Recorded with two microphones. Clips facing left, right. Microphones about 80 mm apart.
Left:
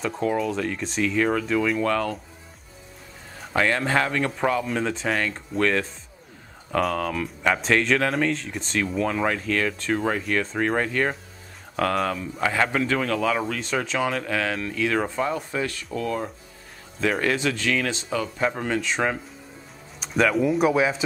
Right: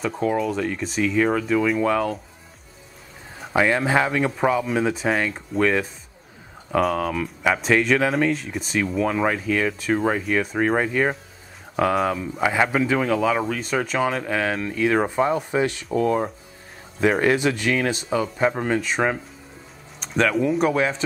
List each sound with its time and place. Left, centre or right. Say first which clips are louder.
0.0 s speech: right 2 dB; centre
3.5 s speech: right 3 dB; centre
17.2 s speech: right 4 dB; centre